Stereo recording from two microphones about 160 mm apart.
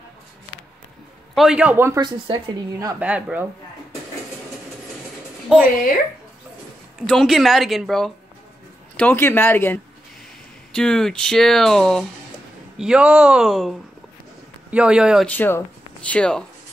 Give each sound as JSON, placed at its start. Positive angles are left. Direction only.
{"t": 1.3, "sound": "a man's voice", "side_deg": -5}
{"t": 2.0, "sound": "speech", "side_deg": -30}
{"t": 3.0, "sound": "a man's voice", "side_deg": -5}
{"t": 5.5, "sound": "speech", "side_deg": -5}
{"t": 7.0, "sound": "speech", "side_deg": 0}
{"t": 8.9, "sound": "speech", "side_deg": 10}
{"t": 15.2, "sound": "speech", "side_deg": 10}